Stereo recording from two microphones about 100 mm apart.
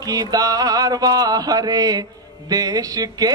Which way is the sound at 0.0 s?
40° right (ahead or behind).